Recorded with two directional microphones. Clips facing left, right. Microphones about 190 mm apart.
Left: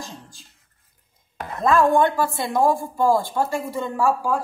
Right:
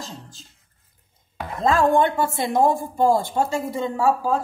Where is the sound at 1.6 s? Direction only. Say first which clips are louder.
Left 1 dB; 25° right (ahead or behind).